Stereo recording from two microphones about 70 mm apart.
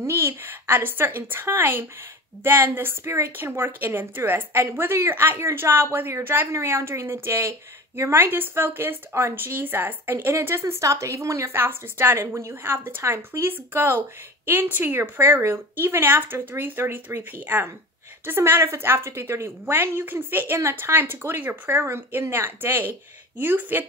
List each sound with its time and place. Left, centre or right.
0.0 s a woman's voice: right
11.5 s a woman's voice: right
12.4 s speech: right
12.7 s a woman's voice: right